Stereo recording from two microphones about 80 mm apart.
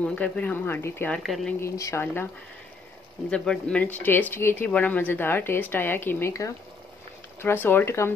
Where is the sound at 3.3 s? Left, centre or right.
Centre; by 6.3 s left.